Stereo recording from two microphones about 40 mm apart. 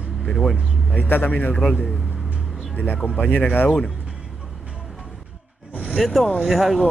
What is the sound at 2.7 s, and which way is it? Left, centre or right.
Speech, left.